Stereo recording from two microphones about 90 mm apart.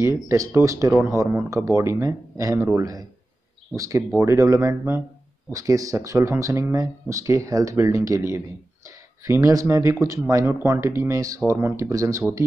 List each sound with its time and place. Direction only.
0.0 s speech: 35° right (ahead or behind)
5.5 s speech: 40° right (ahead or behind)